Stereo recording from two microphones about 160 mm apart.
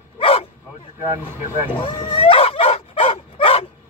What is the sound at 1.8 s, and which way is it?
Dog, 35° left (ahead or behind).